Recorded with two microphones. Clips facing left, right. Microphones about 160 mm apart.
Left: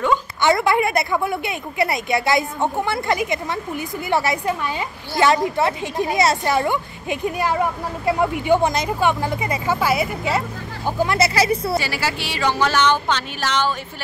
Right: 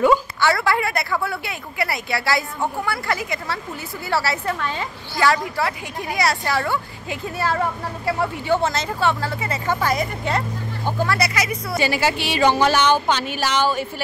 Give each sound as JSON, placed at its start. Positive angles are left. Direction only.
{"t": 0.4, "sound": "a woman's voice", "side_deg": 20}
{"t": 11.1, "sound": "a woman's voice", "side_deg": 30}
{"t": 11.8, "sound": "speech", "side_deg": -20}